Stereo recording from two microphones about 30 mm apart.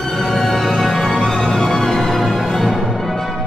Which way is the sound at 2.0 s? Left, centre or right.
Centre.